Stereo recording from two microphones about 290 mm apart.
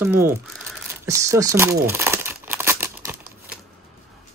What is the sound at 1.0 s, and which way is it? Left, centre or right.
Crumpling, centre.